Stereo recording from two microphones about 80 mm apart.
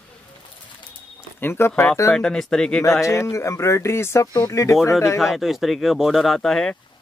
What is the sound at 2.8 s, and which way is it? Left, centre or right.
Speech, left.